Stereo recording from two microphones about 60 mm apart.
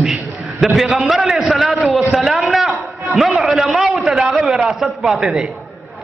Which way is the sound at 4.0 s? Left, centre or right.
Centre.